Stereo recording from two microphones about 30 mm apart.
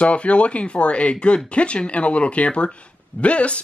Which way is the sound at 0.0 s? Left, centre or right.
Left.